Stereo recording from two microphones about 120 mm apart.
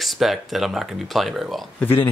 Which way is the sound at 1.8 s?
15° left (ahead or behind).